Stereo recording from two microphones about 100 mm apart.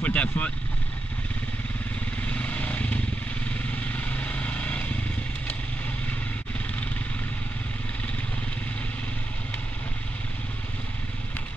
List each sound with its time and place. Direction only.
0.0 s vehicle: 15° left (ahead or behind)
2.2 s vehicle: 15° left (ahead or behind)